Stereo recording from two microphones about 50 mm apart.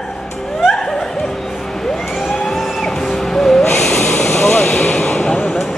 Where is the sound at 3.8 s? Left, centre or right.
Centre.